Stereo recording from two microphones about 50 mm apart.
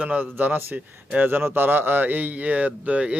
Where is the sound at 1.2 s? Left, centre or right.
Right.